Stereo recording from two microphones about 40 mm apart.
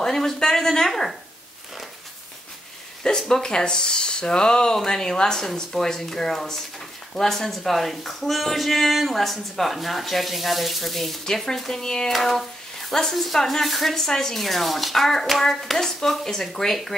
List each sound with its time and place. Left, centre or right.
0.0 s speech: centre
3.0 s speech: centre
12.1 s speech: centre